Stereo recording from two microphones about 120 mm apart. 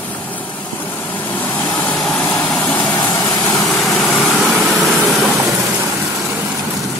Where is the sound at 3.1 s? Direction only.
30° left (ahead or behind).